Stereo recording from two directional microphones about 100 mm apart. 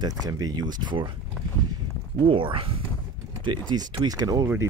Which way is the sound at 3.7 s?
45° right (ahead or behind).